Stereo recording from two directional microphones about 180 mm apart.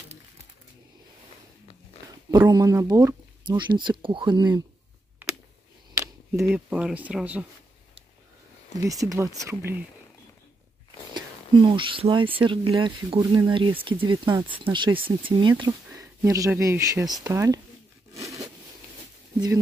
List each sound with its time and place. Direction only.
2.3 s speech: 20° right (ahead or behind)
5.9 s camera: 15° right (ahead or behind)
6.5 s speech: 5° right (ahead or behind)
8.7 s speech: 20° right (ahead or behind)
11.1 s speech: 25° right (ahead or behind)
18.1 s sawing: 15° right (ahead or behind)